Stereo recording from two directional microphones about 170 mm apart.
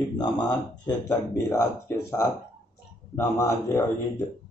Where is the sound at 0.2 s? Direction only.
25° left (ahead or behind).